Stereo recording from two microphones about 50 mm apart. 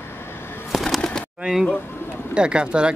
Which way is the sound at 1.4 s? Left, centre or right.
Centre.